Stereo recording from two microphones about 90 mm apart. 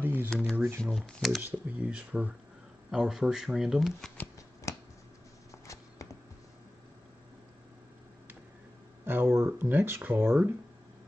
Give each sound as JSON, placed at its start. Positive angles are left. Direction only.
{"t": 0.0, "sound": "speech", "side_deg": -25}
{"t": 0.8, "sound": "speech", "side_deg": 0}
{"t": 1.4, "sound": "speech", "side_deg": -15}
{"t": 4.7, "sound": "finger snapping", "side_deg": 35}
{"t": 5.5, "sound": "walk", "side_deg": 35}
{"t": 9.0, "sound": "speech", "side_deg": -20}